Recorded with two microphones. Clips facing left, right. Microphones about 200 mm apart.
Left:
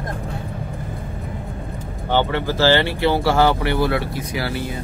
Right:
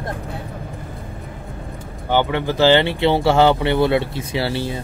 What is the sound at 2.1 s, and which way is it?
Speech, 15° right (ahead or behind).